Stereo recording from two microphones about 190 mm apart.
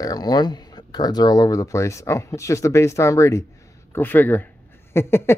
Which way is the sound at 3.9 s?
10° left (ahead or behind).